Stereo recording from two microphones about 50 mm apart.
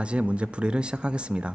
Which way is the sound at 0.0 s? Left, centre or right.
Right.